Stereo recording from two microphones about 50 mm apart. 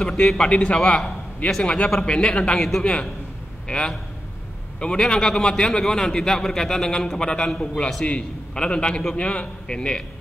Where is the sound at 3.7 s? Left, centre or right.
Centre.